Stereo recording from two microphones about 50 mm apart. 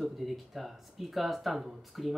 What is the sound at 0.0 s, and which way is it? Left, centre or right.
Speech, centre.